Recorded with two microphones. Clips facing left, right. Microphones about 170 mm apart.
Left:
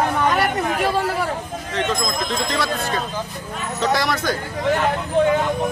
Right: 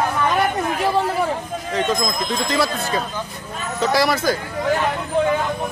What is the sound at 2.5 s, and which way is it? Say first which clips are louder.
Speech: right 2 dB; 5° right (ahead or behind).